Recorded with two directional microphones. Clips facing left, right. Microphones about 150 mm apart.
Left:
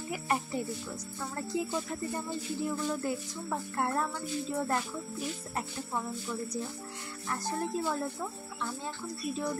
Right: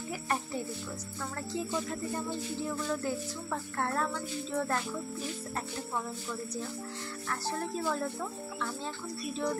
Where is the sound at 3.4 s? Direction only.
15° left (ahead or behind).